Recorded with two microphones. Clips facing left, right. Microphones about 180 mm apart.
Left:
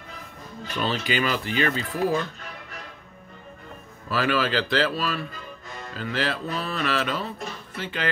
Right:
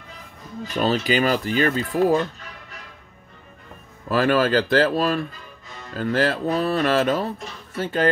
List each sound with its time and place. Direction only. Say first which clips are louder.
0.7 s speech: right 5 dB; 40° right (ahead or behind)
4.1 s speech: right 6 dB; 45° right (ahead or behind)